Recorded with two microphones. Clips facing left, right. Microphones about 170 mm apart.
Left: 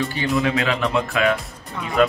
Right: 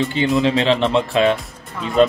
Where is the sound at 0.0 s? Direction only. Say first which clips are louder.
Right 4 dB; 20° right (ahead or behind).